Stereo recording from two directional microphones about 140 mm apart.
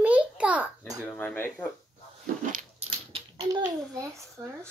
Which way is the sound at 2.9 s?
40° right (ahead or behind).